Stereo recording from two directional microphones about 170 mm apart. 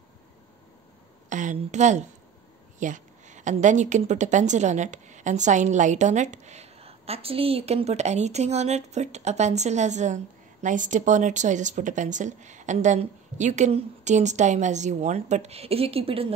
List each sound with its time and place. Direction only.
1.3 s a woman's voice: 45° right (ahead or behind)